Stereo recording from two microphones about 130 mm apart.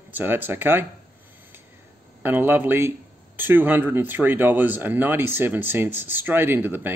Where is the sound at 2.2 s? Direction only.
15° right (ahead or behind).